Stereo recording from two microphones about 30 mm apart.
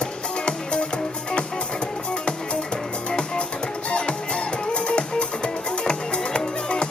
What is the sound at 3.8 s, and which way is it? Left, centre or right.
Music, left.